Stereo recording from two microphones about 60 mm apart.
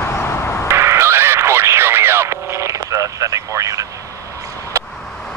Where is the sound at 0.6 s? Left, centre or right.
Right.